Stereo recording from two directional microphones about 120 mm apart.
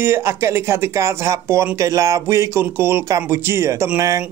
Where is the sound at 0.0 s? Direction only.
20° right (ahead or behind).